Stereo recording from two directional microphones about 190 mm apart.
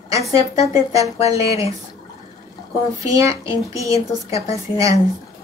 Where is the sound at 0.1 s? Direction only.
15° right (ahead or behind).